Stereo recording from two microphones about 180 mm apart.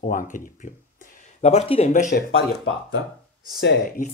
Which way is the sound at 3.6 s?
70° left (ahead or behind).